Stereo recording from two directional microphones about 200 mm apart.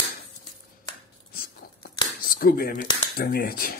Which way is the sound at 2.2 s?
45° left (ahead or behind).